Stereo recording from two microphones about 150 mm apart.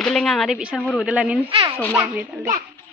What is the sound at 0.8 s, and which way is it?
Speech, 10° left (ahead or behind).